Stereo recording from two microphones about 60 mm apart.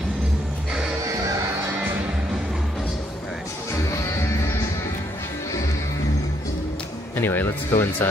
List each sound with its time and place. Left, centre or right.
7.2 s speech: left